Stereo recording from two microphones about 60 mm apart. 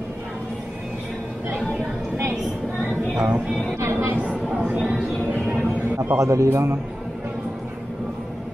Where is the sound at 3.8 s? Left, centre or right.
Right.